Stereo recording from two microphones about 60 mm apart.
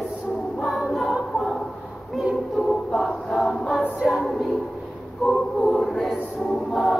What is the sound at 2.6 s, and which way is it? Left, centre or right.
Choir, centre.